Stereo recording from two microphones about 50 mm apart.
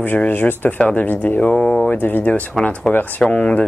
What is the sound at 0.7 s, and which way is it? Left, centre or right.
Speech, left.